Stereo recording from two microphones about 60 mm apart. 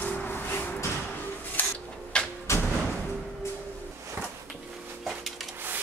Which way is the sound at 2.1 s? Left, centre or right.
Centre.